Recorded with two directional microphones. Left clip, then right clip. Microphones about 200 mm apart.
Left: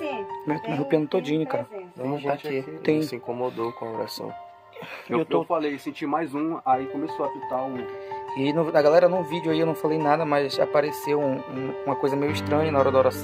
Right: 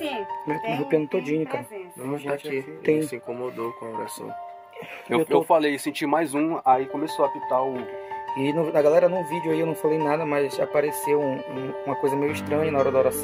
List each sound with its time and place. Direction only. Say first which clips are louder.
0.0 s speech: right 1 dB; 10° left (ahead or behind)
5.1 s speech: right 4 dB; 45° right (ahead or behind)
8.4 s speech: left 1 dB; centre (ahead or behind)